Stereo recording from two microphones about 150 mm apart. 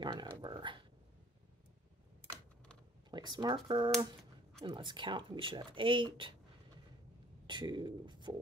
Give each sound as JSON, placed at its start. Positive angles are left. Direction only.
{"t": 0.0, "sound": "a sound", "side_deg": -30}
{"t": 2.2, "sound": "typing", "side_deg": 10}
{"t": 3.1, "sound": "speech", "side_deg": -30}
{"t": 7.4, "sound": "speech", "side_deg": -30}